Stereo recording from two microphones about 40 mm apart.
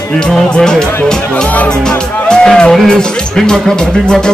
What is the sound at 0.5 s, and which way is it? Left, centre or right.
Speech, centre.